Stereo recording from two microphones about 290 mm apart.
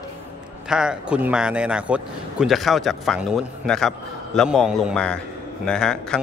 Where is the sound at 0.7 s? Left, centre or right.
Centre.